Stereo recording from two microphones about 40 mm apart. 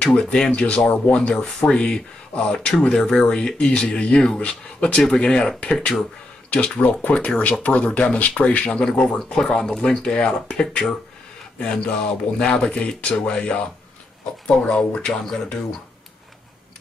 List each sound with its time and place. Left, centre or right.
0.2 s speech: centre
0.5 s speech: left
5.0 s speech: left
7.0 s speech: left
8.7 s speech: left